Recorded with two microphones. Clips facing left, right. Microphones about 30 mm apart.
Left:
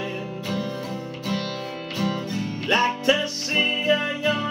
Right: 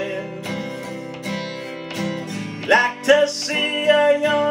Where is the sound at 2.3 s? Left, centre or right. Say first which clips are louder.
Right 7 dB; right.